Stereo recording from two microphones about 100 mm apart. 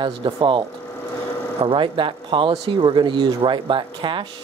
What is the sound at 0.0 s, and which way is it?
Speech, 55° right (ahead or behind).